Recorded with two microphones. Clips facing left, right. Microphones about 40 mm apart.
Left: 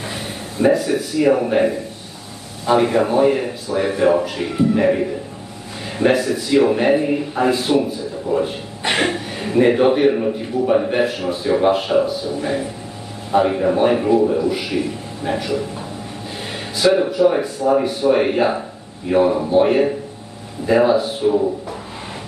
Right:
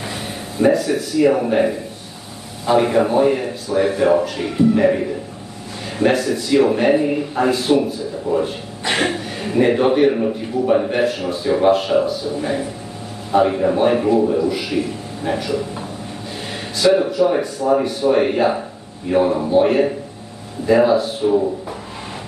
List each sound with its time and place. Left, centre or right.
0.0 s a man's voice: centre
16.7 s a man's voice: centre